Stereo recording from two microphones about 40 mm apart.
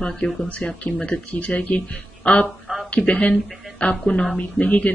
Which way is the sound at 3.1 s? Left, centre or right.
Left.